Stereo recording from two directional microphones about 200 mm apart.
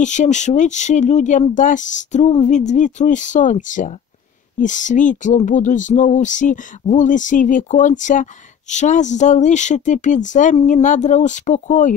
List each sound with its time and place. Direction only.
0.0 s speech: 35° left (ahead or behind)